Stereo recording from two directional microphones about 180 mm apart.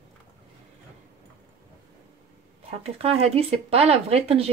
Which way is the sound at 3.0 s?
35° right (ahead or behind).